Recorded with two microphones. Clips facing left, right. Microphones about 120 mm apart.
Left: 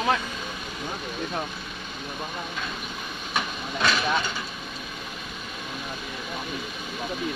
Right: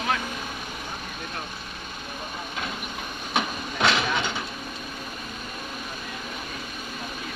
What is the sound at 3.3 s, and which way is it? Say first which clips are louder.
Train: right 2 dB; 20° right (ahead or behind).